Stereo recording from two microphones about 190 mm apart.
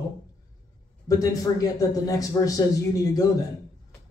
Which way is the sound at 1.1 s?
20° left (ahead or behind).